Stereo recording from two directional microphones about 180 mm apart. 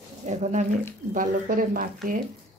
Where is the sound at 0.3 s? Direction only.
40° right (ahead or behind).